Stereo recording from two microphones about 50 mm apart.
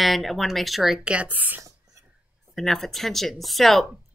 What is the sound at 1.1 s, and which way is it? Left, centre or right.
Speech, right.